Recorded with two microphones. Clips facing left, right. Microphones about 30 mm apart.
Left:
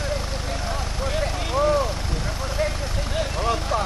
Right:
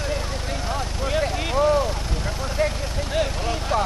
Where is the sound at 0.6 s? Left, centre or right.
Centre.